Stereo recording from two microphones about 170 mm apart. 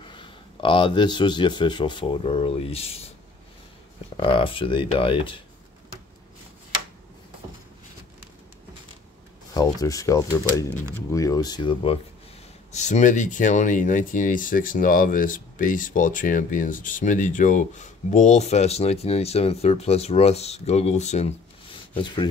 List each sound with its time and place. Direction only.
0.0 s speech: 30° left (ahead or behind)
4.2 s speech: 30° left (ahead or behind)
9.5 s speech: 20° left (ahead or behind)
12.7 s speech: 45° left (ahead or behind)
21.9 s speech: 25° left (ahead or behind)